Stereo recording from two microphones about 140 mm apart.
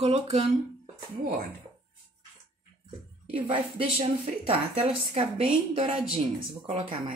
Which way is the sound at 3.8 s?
40° right (ahead or behind).